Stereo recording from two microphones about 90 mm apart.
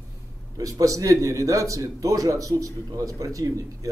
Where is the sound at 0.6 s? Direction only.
40° right (ahead or behind).